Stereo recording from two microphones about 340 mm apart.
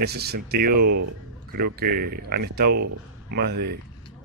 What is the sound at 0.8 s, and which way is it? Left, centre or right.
Speech, right.